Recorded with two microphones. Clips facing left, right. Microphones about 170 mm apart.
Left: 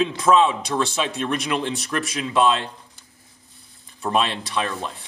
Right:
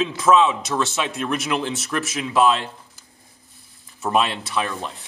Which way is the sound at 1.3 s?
5° right (ahead or behind).